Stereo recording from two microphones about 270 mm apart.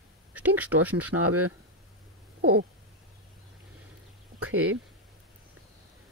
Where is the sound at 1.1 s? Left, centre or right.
Right.